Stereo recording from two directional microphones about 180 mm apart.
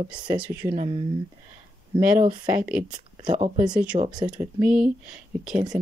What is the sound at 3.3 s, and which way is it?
Speech, 35° right (ahead or behind).